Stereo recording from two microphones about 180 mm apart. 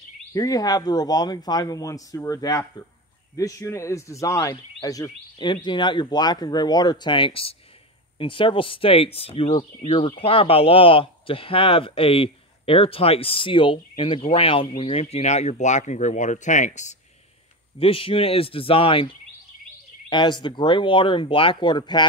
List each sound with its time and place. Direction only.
0.3 s speech: 20° left (ahead or behind); by 16.9 s 40° left (ahead or behind)
17.7 s speech: 30° left (ahead or behind)
20.1 s speech: 25° left (ahead or behind)